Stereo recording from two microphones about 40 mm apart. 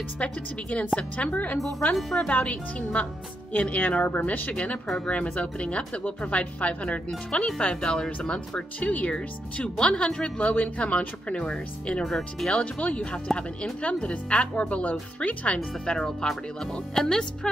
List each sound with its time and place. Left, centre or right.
0.2 s speech: left
2.0 s speech: centre
2.2 s speech: left
3.8 s speech: left
4.8 s speech: centre
5.1 s speech: left
7.2 s speech: left
8.7 s speech: left
9.1 s speech: left
12.0 s speech: centre
12.5 s speech: left
15.8 s speech: centre